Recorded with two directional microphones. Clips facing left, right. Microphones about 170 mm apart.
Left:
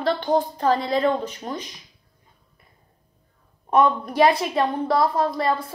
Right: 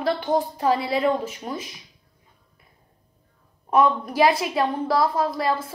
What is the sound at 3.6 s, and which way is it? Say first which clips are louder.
A woman's voice: left 1 dB; centre (ahead or behind).